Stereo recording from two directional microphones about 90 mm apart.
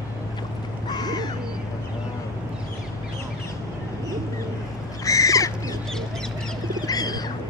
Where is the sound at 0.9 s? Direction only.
50° left (ahead or behind).